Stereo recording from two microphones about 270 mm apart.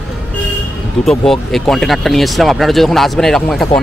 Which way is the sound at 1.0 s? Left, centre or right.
Centre.